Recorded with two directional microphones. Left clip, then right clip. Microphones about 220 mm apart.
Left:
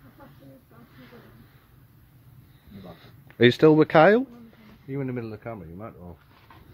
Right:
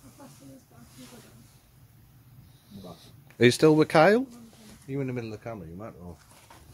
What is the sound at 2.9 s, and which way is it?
Speech, 10° left (ahead or behind).